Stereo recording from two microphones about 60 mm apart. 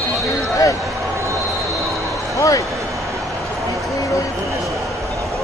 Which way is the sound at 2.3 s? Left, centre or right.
Left.